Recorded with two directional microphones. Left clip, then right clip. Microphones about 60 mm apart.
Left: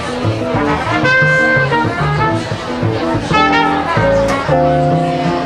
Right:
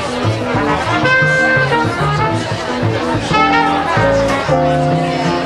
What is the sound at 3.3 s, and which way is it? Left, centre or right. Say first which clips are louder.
Music: even; centre.